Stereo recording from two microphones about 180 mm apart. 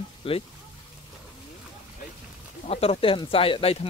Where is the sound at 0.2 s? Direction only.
30° left (ahead or behind).